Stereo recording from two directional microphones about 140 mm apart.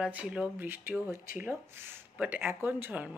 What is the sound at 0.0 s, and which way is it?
Speech, 10° right (ahead or behind).